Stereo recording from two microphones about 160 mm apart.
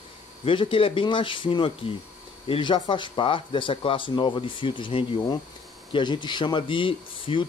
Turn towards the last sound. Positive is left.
turn(degrees=30)  # may be behind; listen again after turning